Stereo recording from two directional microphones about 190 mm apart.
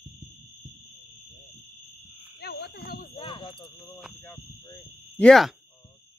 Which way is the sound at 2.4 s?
55° left (ahead or behind).